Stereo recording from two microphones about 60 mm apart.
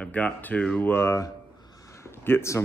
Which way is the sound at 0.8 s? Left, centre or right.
Left.